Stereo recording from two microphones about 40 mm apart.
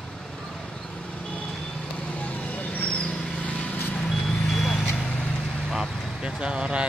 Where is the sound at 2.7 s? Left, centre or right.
Left.